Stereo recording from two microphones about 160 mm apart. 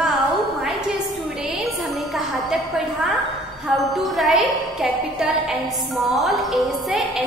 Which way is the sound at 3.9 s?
Centre (ahead or behind).